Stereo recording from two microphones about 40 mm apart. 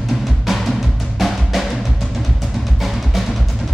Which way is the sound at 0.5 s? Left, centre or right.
Centre.